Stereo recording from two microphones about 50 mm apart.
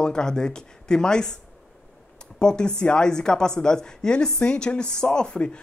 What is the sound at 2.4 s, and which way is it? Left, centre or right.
Speech, centre.